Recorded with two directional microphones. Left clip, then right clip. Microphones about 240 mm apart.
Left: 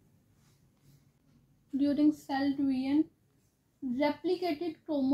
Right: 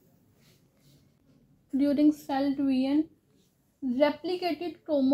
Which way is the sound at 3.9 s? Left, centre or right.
Right.